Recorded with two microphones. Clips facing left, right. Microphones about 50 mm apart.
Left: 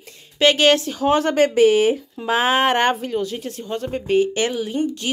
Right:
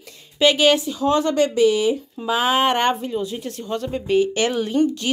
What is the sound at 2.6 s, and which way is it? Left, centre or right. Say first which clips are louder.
Speech: left 1 dB; centre.